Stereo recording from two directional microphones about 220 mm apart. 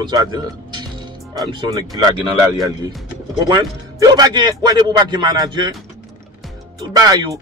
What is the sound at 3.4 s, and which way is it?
Speech, 20° right (ahead or behind).